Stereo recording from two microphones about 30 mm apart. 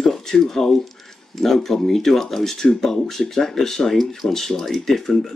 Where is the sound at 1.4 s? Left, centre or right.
Centre.